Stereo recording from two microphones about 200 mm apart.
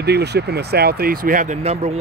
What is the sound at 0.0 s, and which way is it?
Speech, 55° right (ahead or behind).